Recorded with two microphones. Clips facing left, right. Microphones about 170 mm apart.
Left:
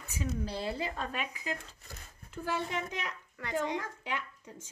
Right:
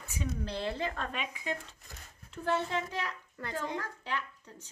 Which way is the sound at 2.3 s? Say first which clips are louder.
Right 3 dB; 15° left (ahead or behind).